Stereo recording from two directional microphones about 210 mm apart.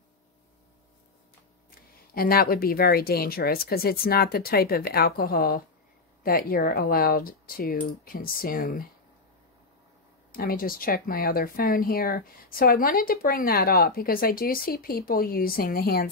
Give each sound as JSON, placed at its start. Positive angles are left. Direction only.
{"t": 2.1, "sound": "speech", "side_deg": 45}
{"t": 10.3, "sound": "speech", "side_deg": 45}